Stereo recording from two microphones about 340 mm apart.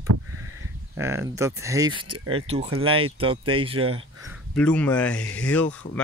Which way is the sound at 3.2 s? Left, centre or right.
Centre.